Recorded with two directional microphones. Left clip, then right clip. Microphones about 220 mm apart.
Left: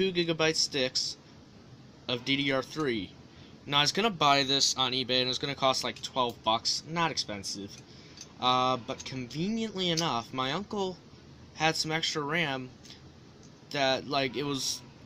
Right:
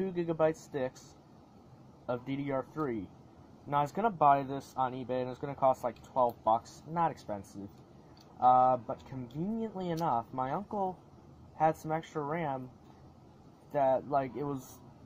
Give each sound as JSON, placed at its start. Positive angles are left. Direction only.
{"t": 0.0, "sound": "speech", "side_deg": 10}
{"t": 2.4, "sound": "speech", "side_deg": 15}
{"t": 6.1, "sound": "speech", "side_deg": 5}
{"t": 8.4, "sound": "speech", "side_deg": 5}
{"t": 13.7, "sound": "speech", "side_deg": 15}